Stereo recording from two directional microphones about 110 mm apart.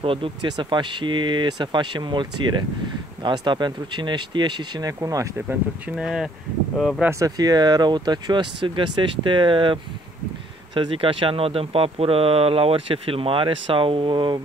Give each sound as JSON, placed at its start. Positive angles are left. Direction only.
{"t": 0.0, "sound": "speech", "side_deg": -55}
{"t": 5.5, "sound": "speech", "side_deg": -5}
{"t": 7.1, "sound": "speech", "side_deg": -30}